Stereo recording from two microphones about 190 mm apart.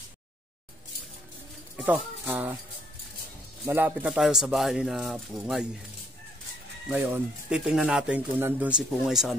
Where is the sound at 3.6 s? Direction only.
10° right (ahead or behind).